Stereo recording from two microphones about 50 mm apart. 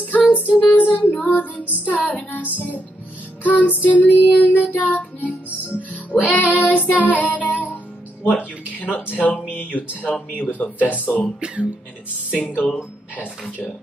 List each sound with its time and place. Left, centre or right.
0.0 s music: left
2.3 s child singing: left
7.4 s music: left
8.3 s a sound: left
9.1 s child singing: left
9.5 s speech: left
10.5 s child singing: left
12.3 s speech: left